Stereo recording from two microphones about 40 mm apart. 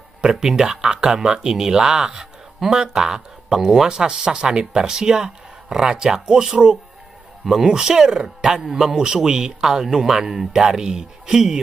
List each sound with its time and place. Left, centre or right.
0.3 s speech: centre